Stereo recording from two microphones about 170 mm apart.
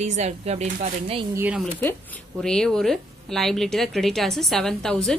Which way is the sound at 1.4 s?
10° right (ahead or behind).